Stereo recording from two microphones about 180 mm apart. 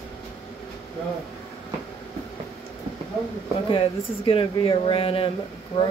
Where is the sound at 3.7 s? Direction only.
30° left (ahead or behind).